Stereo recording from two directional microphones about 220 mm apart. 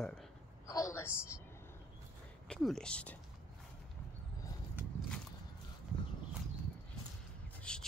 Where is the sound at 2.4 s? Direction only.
5° left (ahead or behind).